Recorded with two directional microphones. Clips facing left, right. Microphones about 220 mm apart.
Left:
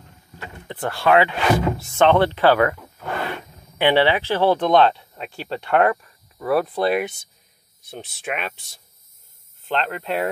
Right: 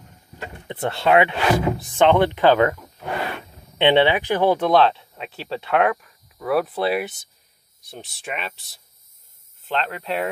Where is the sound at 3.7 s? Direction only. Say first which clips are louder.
Right 1 dB; 20° right (ahead or behind); by 8.4 s centre (ahead or behind).